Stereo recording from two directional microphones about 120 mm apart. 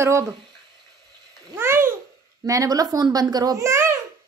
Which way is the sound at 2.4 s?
30° right (ahead or behind).